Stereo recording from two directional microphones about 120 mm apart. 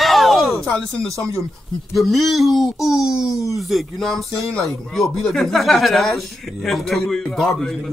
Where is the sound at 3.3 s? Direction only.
25° left (ahead or behind).